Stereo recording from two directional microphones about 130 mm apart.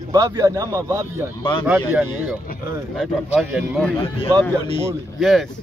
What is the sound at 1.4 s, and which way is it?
Speech, 35° left (ahead or behind).